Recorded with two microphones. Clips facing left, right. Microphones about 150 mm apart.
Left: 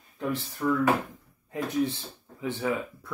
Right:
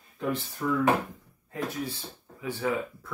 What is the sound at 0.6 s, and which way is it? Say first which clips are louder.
Speech: left 3 dB; 5° right (ahead or behind).